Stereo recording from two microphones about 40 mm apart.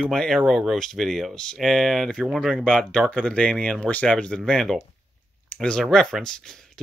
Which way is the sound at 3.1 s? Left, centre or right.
Left.